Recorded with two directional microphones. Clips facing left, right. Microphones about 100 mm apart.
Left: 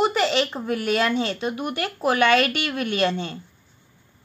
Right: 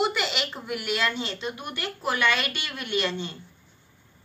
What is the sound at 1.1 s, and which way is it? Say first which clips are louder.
Speech: left 8 dB; 50° left (ahead or behind).